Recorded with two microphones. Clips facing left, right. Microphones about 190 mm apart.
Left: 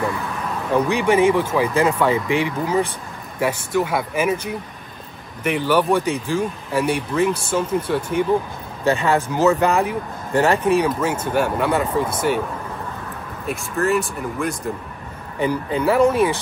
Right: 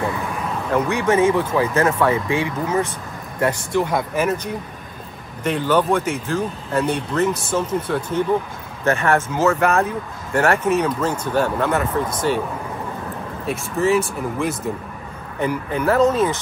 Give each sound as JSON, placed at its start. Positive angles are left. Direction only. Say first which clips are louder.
{"t": 0.7, "sound": "speech", "louder": "left 1 dB", "side_deg": 15}
{"t": 5.4, "sound": "speech", "louder": "even", "side_deg": 10}
{"t": 13.5, "sound": "speech", "louder": "right 2 dB", "side_deg": 0}
{"t": 15.3, "sound": "speech", "louder": "left 1 dB", "side_deg": 15}